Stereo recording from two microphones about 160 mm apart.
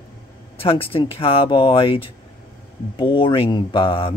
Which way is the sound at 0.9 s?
35° left (ahead or behind).